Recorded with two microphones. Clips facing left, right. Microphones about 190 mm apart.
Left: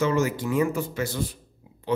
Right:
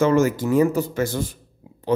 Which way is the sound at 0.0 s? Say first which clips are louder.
Right 6 dB; 50° right (ahead or behind).